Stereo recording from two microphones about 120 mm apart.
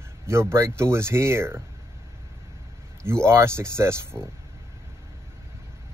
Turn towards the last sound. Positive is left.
turn(degrees=-20)  # may be behind; listen again after turning